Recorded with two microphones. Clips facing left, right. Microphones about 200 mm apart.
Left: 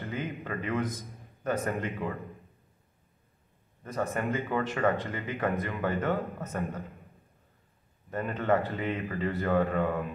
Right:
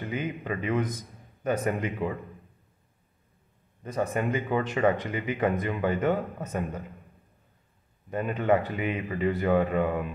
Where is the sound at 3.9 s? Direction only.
15° right (ahead or behind).